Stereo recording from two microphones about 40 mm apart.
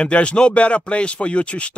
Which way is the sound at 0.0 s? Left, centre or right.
Left.